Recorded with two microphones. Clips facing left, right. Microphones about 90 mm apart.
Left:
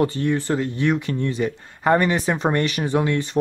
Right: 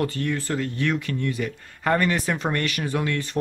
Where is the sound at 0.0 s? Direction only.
25° left (ahead or behind).